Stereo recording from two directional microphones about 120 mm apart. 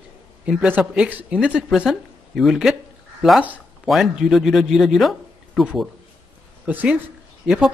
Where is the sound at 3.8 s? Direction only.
Centre (ahead or behind).